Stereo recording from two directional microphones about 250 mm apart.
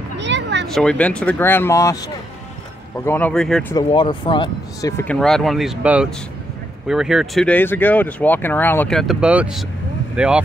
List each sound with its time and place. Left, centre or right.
0.2 s a sound: right
0.7 s speech: centre
3.1 s speech: centre
3.7 s speech: centre